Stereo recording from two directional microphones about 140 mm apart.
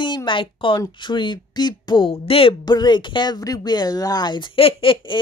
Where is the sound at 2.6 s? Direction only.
30° left (ahead or behind).